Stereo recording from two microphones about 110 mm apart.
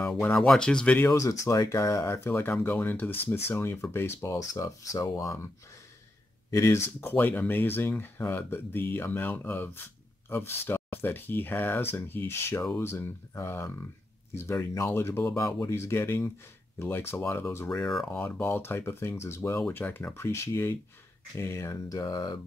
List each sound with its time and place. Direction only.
0.2 s speech: 20° left (ahead or behind)
0.5 s speech: 5° left (ahead or behind)
1.0 s speech: 30° left (ahead or behind)
6.5 s speech: 25° left (ahead or behind)
17.7 s speech: 5° left (ahead or behind)
18.2 s speech: 20° left (ahead or behind); by 22.4 s 35° left (ahead or behind)